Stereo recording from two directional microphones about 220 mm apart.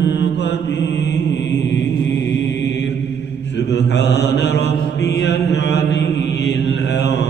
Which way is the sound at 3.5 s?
50° left (ahead or behind).